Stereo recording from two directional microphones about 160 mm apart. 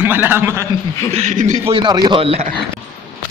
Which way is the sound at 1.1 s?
50° right (ahead or behind).